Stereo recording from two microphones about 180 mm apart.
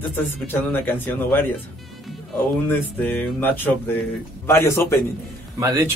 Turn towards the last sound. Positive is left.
turn(degrees=-15)  # may be behind; listen again after turning